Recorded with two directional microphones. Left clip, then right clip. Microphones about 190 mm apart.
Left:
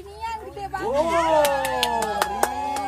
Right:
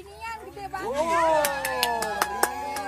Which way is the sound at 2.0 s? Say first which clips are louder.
Left 3 dB; 5° right (ahead or behind).